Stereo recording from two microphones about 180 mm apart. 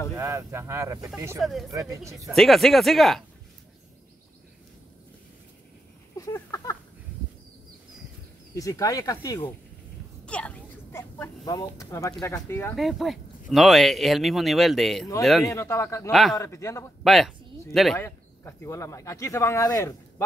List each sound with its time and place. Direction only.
0.1 s speech: 15° right (ahead or behind)
1.4 s speech: centre (ahead or behind)
1.7 s speech: 20° right (ahead or behind)
2.2 s speech: centre (ahead or behind)
6.1 s a sound: 15° left (ahead or behind)
8.5 s speech: 20° left (ahead or behind)
10.2 s speech: 5° left (ahead or behind)
12.7 s speech: centre (ahead or behind)
15.4 s speech: 15° left (ahead or behind)
16.1 s speech: centre (ahead or behind)
16.3 s speech: 15° left (ahead or behind)
17.0 s speech: centre (ahead or behind)
17.9 s speech: 15° left (ahead or behind)